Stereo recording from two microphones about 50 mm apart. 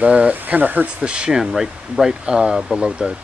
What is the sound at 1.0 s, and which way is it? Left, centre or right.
Speech, centre.